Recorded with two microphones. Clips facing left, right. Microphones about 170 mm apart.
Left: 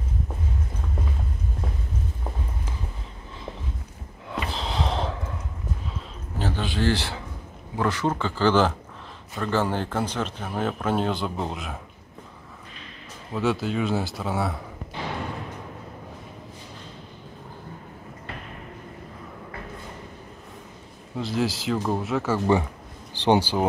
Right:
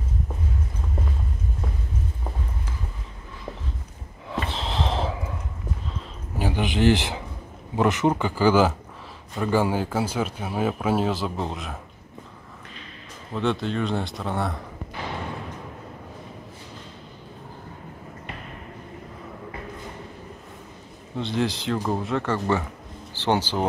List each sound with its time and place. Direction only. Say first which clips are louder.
4.3 s sigh: right 1 dB; centre (ahead or behind)
6.3 s speech: right 3 dB; 15° right (ahead or behind)
13.3 s speech: even; 5° left (ahead or behind)
21.2 s speech: even; centre (ahead or behind)